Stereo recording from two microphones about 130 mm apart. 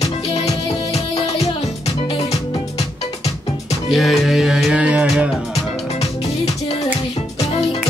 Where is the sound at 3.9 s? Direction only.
Centre (ahead or behind).